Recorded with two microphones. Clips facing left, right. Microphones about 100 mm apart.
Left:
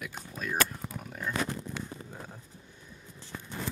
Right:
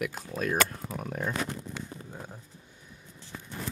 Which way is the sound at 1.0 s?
50° right (ahead or behind).